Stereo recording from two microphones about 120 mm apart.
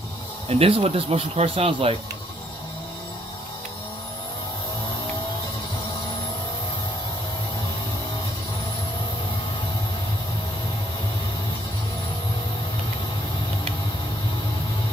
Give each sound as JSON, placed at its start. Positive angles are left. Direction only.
{"t": 0.5, "sound": "speech", "side_deg": -55}